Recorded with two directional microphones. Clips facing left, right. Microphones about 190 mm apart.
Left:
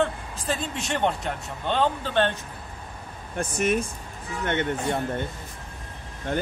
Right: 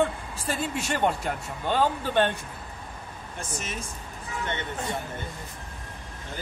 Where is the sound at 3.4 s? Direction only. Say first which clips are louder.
Left 12 dB; 60° left (ahead or behind).